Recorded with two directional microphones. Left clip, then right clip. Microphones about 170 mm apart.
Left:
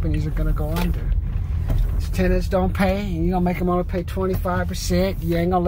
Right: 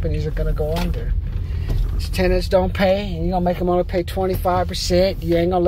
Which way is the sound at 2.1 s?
15° right (ahead or behind).